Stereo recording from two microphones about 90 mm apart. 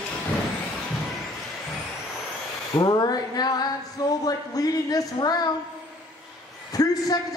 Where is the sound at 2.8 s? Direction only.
45° left (ahead or behind).